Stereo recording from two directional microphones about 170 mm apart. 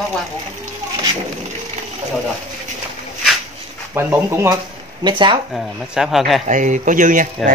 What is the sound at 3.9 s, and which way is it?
Speech, 15° right (ahead or behind).